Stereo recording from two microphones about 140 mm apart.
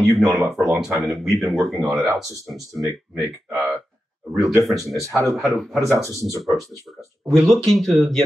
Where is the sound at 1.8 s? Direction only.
20° right (ahead or behind).